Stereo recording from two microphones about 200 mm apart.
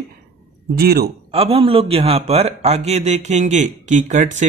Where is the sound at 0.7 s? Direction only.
50° right (ahead or behind).